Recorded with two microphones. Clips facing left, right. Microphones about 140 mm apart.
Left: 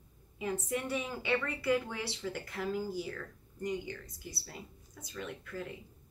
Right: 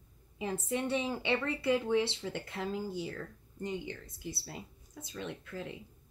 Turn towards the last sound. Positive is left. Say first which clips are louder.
# even
turn(degrees=-25)  # may be behind; listen again after turning